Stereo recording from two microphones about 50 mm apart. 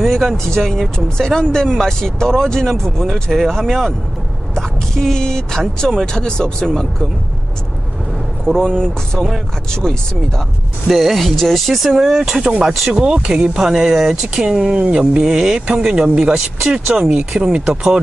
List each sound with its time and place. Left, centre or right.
0.0 s speech: centre
8.5 s speech: centre
10.9 s speech: centre
12.9 s speech: centre
13.6 s speech: centre